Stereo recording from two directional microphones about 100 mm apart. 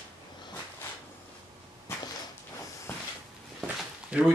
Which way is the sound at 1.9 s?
25° left (ahead or behind).